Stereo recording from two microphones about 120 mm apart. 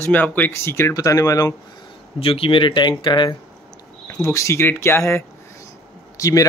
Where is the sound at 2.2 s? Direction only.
50° left (ahead or behind).